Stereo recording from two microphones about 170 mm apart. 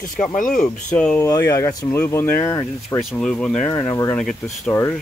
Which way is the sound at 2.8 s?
5° left (ahead or behind).